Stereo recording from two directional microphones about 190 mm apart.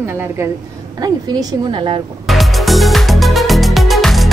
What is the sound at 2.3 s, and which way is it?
Music, centre (ahead or behind).